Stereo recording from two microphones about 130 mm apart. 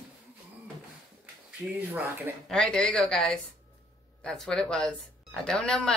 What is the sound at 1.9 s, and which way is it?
Speech, 15° right (ahead or behind).